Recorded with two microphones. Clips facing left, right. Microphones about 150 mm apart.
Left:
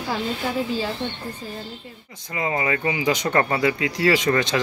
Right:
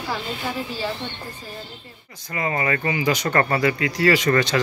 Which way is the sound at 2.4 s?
15° left (ahead or behind).